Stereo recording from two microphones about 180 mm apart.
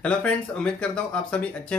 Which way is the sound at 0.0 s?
5° left (ahead or behind).